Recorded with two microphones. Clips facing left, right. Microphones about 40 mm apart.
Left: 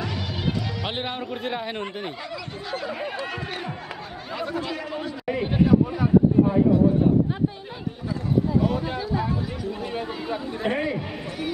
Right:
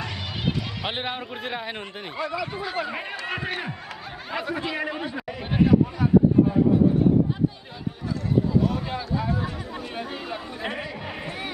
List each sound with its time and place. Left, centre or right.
0.8 s speech: centre
3.3 s a sound: centre
4.3 s speech: centre
4.6 s a man's voice: right
5.4 s a sound: centre
8.6 s speech: centre
10.7 s a man's voice: centre